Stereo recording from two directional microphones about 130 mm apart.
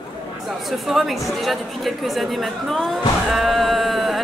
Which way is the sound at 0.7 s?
Centre (ahead or behind).